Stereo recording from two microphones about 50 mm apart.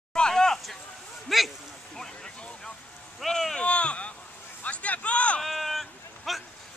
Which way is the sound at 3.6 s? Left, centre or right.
Left.